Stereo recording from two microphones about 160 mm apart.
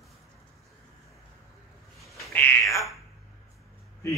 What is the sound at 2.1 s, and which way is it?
Bird, 15° left (ahead or behind).